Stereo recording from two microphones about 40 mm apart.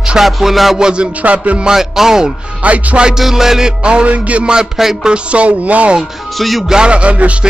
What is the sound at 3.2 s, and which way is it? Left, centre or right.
Speech, centre.